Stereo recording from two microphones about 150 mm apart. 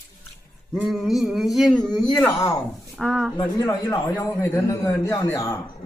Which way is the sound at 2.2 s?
20° left (ahead or behind).